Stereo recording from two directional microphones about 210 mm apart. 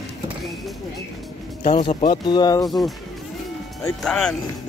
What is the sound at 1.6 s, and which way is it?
Speech, 30° left (ahead or behind).